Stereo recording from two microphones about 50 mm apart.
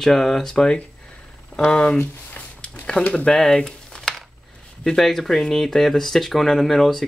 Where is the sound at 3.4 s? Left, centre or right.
Centre.